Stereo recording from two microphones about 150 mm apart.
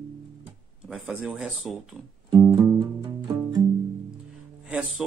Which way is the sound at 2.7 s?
30° right (ahead or behind).